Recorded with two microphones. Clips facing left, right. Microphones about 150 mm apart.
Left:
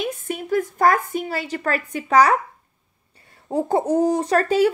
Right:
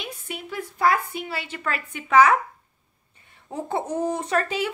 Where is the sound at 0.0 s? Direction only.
45° left (ahead or behind).